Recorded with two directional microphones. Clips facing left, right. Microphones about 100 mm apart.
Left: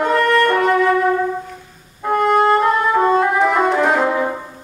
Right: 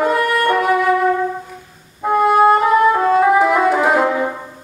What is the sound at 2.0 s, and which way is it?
Music, 5° right (ahead or behind).